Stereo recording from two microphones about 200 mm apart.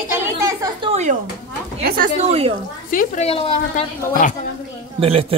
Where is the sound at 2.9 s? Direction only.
40° left (ahead or behind).